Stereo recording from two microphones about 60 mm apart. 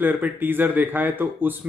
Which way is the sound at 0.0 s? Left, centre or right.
Right.